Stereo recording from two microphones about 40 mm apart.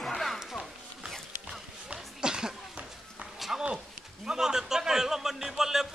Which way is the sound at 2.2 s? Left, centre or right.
Centre.